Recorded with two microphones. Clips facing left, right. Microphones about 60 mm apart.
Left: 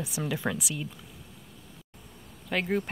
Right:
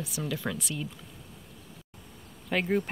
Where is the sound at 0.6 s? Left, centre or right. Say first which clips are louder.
Even; centre.